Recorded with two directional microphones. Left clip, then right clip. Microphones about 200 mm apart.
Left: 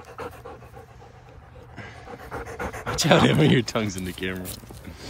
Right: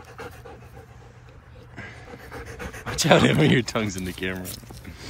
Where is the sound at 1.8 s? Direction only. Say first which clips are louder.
Even; 10° left (ahead or behind).